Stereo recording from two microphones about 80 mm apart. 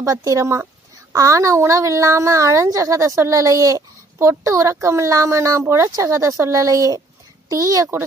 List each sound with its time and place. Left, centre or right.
0.0 s speech: right
5.9 s speech: right
6.1 s a woman's voice: right